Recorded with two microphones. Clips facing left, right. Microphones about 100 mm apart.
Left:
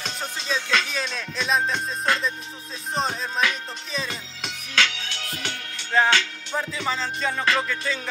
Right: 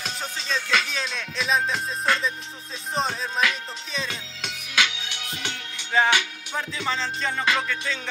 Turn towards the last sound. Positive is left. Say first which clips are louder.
# left 1 dB
turn(degrees=0)  # may be behind; listen again after turning